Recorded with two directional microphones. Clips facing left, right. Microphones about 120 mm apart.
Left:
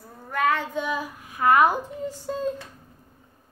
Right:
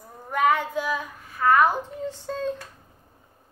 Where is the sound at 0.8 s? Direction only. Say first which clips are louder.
Even; centre (ahead or behind).